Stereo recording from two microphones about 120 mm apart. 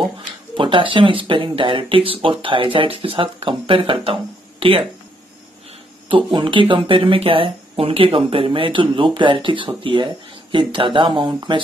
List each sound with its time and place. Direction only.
0.6 s speech: 45° right (ahead or behind)
6.0 s speech: 45° right (ahead or behind)